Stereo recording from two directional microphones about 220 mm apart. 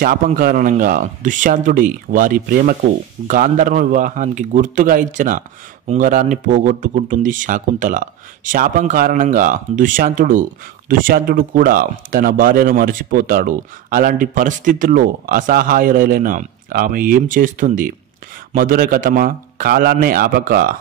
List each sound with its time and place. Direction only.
0.0 s speech: 40° right (ahead or behind)